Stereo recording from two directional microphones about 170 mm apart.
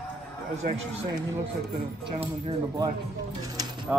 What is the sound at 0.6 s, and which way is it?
Speech, 40° right (ahead or behind).